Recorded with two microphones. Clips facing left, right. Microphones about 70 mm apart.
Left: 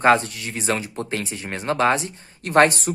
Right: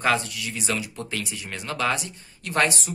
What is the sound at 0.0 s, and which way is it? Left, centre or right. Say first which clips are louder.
Speech: left 7 dB; left.